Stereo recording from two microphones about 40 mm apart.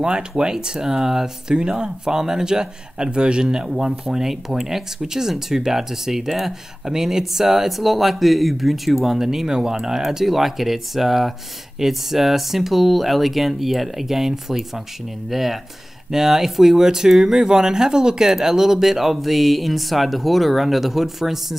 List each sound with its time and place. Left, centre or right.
0.4 s speech: right